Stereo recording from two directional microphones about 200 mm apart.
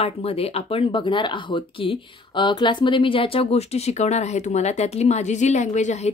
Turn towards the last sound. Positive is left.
turn(degrees=35)  # may be behind; listen again after turning